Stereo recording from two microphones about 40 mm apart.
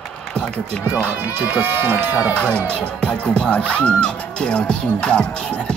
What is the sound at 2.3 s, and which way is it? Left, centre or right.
Speech, left.